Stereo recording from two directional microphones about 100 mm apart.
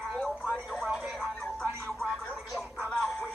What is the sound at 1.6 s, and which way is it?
Music, 30° right (ahead or behind).